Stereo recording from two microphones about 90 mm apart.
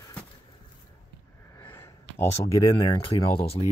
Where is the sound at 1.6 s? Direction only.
25° left (ahead or behind).